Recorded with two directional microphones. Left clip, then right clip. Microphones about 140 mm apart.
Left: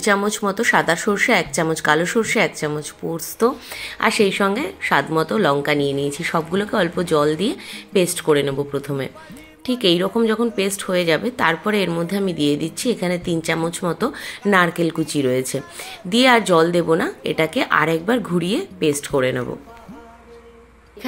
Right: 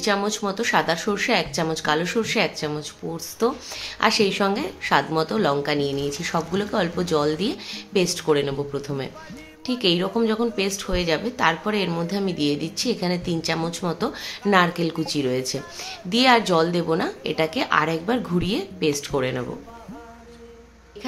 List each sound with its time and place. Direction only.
0.0 s a woman's voice: 35° left (ahead or behind)
3.7 s a woman's voice: 20° left (ahead or behind)